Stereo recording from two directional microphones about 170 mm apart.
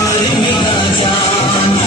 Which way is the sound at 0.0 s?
25° left (ahead or behind).